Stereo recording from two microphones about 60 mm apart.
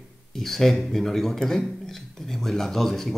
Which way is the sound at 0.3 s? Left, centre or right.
Centre.